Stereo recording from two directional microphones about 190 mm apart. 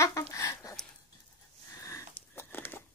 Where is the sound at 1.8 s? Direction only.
15° left (ahead or behind).